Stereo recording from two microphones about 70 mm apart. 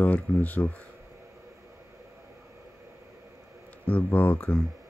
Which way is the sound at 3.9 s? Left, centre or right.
Left.